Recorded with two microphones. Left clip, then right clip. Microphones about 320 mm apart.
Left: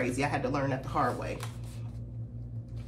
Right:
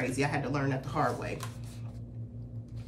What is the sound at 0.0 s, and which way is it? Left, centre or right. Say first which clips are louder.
Speech: left 1 dB; centre.